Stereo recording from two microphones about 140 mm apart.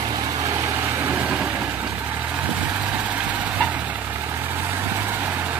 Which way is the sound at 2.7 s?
10° right (ahead or behind).